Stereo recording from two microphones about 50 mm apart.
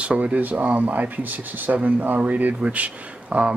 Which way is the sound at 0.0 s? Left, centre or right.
Right.